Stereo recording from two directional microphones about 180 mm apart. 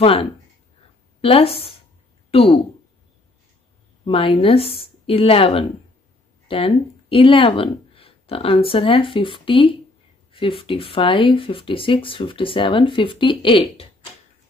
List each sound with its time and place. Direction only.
0.0 s speech: 30° left (ahead or behind)
4.0 s speech: 30° left (ahead or behind)